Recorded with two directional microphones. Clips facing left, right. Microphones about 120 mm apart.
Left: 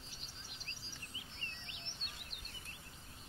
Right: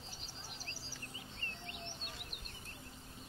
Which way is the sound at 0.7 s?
35° right (ahead or behind).